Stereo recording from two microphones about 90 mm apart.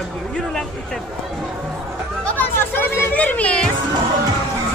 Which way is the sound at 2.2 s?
20° left (ahead or behind).